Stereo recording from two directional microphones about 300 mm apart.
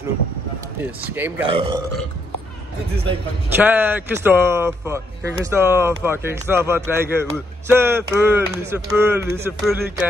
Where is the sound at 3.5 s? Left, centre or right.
Centre.